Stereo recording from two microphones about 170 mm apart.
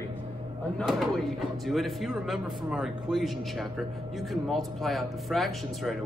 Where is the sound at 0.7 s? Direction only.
Centre (ahead or behind).